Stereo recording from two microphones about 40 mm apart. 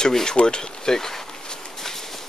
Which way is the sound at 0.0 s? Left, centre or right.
Centre.